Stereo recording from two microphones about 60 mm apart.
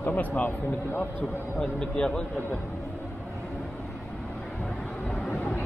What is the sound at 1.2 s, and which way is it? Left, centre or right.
Speech, centre.